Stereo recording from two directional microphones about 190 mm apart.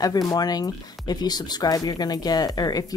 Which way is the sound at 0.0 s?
20° left (ahead or behind).